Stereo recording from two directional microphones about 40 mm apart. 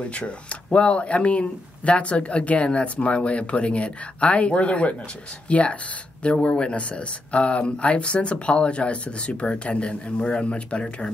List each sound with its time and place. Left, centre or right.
0.0 s speech: left